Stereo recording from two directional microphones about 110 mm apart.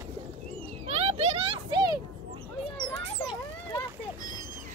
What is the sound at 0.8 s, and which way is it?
Pigeon, 75° right (ahead or behind).